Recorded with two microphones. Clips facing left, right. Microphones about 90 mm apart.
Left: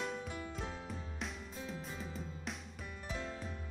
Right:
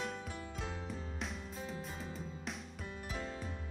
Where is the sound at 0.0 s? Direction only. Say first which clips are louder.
Left 1 dB; centre (ahead or behind).